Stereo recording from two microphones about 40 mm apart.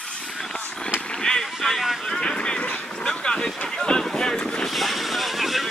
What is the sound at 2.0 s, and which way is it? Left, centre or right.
Vehicle, centre.